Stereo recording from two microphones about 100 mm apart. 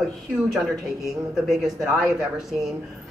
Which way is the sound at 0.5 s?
5° right (ahead or behind).